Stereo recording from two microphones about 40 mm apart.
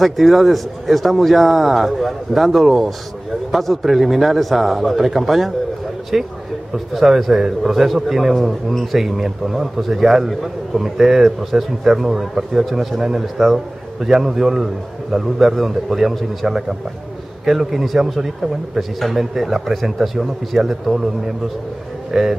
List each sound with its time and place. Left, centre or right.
0.0 s a man's voice: centre
22.1 s a man's voice: centre